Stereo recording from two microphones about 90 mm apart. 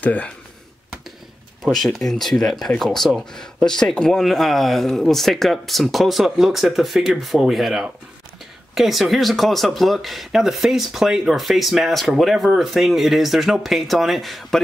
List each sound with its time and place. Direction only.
0.0 s speech: 15° left (ahead or behind)
1.6 s speech: centre (ahead or behind)